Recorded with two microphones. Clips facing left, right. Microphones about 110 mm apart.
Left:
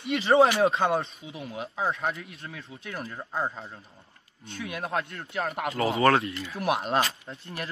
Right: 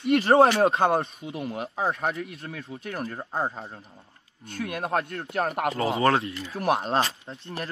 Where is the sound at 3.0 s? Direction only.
35° right (ahead or behind).